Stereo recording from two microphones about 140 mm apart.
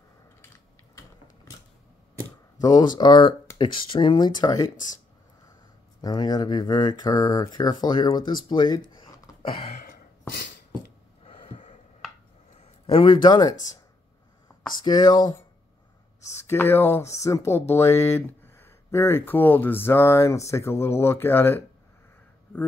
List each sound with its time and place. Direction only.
2.6 s speech: 30° left (ahead or behind)
5.9 s speech: 30° left (ahead or behind)
9.0 s a sound: 40° left (ahead or behind)
11.2 s gasp: 55° left (ahead or behind)
12.8 s speech: 35° left (ahead or behind)
14.9 s speech: 30° left (ahead or behind)
16.3 s speech: 20° left (ahead or behind)